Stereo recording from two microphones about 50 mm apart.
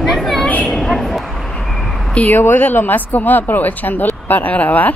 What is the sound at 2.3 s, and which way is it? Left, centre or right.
Speech, left.